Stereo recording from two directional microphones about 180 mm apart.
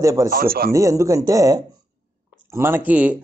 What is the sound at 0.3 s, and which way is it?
Speech, 55° right (ahead or behind).